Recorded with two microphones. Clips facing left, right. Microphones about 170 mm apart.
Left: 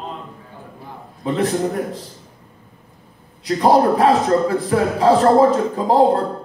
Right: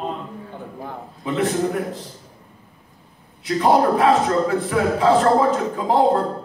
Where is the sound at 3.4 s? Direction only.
35° left (ahead or behind).